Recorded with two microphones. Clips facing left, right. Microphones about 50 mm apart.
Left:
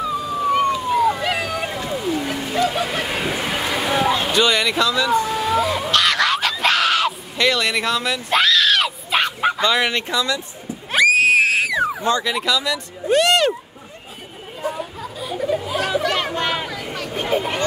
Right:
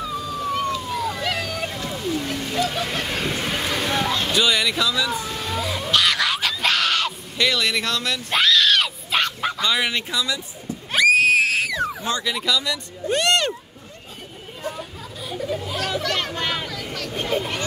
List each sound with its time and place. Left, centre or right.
0.0 s a sound: centre
9.4 s bow-wow: left
9.7 s speech: centre
10.9 s a sound: centre
12.1 s speech: centre
14.6 s chatter: centre